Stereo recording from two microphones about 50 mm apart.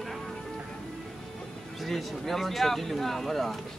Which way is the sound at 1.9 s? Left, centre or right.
Centre.